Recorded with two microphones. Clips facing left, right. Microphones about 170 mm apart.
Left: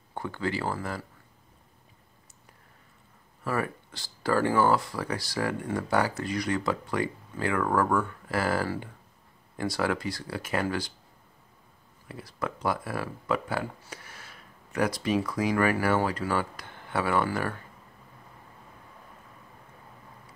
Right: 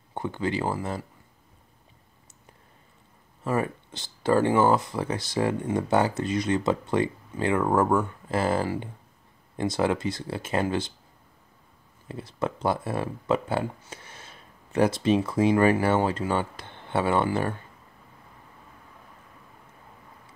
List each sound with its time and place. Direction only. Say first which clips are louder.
0.1 s speech: right 3 dB; 20° right (ahead or behind)
3.4 s speech: right 3 dB; 20° right (ahead or behind)
12.1 s speech: right 4 dB; 25° right (ahead or behind)